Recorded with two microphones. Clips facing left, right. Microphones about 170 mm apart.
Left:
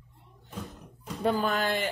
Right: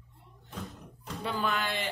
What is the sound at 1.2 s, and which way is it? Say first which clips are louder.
Speech: left 5 dB; 40° left (ahead or behind).